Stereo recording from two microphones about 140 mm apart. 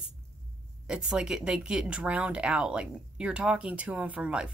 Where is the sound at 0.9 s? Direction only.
5° right (ahead or behind).